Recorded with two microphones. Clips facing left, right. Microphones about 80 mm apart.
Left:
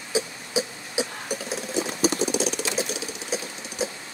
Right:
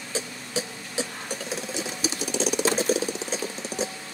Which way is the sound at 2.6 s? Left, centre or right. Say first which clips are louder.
Right 6 dB; right.